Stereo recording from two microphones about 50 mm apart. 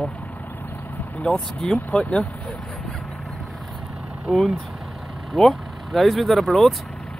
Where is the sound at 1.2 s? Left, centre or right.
Centre.